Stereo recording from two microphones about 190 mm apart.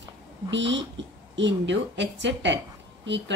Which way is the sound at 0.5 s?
70° right (ahead or behind).